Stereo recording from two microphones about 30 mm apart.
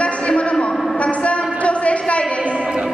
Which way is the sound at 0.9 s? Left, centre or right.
Left.